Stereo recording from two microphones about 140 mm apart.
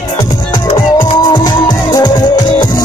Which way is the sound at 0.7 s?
35° left (ahead or behind).